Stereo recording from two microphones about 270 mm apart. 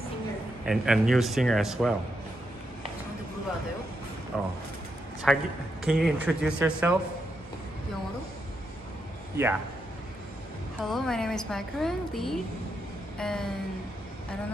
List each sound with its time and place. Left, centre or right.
0.7 s a woman's voice: centre
4.3 s a woman's voice: centre
10.9 s a woman's voice: centre